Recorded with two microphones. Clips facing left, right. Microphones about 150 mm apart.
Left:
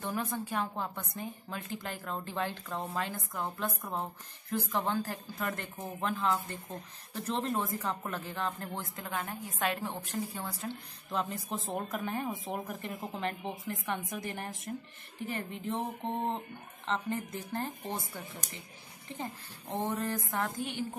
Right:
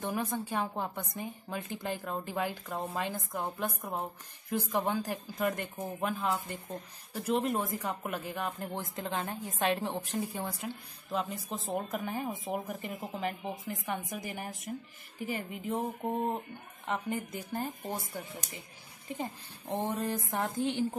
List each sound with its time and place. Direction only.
0.0 s a woman's voice: 15° right (ahead or behind)
11.1 s a woman's voice: centre (ahead or behind)
19.9 s a sound: 15° right (ahead or behind)